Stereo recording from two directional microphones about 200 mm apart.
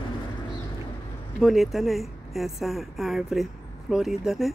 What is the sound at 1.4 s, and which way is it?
Speech, centre (ahead or behind).